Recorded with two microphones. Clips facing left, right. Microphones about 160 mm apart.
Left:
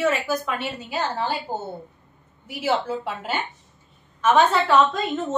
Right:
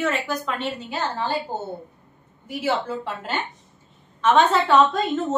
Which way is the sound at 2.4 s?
10° left (ahead or behind).